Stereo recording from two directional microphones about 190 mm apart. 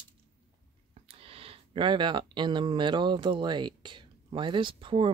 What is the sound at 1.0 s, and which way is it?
Speech, 30° right (ahead or behind).